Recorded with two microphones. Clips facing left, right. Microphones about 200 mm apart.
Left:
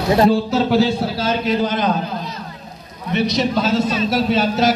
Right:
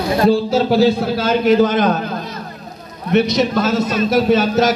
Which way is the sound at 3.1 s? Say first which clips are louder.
Right 4 dB; 50° right (ahead or behind).